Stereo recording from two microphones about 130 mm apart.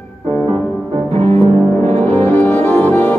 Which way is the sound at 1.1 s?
55° right (ahead or behind).